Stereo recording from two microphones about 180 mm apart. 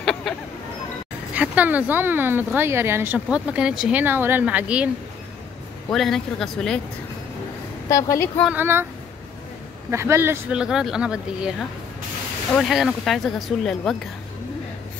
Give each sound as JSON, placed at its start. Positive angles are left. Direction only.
{"t": 0.0, "sound": "a sound", "side_deg": 5}
{"t": 1.3, "sound": "speech", "side_deg": -10}
{"t": 5.9, "sound": "speech", "side_deg": 0}
{"t": 7.9, "sound": "a woman's voice", "side_deg": 15}
{"t": 8.5, "sound": "speech", "side_deg": -10}
{"t": 9.8, "sound": "speech", "side_deg": -15}
{"t": 12.5, "sound": "speech", "side_deg": 0}